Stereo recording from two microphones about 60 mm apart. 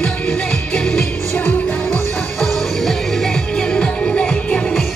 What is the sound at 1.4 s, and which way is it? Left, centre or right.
Music, left.